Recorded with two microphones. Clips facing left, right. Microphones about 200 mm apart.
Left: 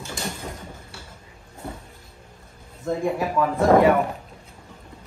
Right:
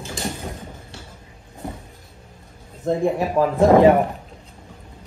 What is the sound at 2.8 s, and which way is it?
Speech, 30° right (ahead or behind).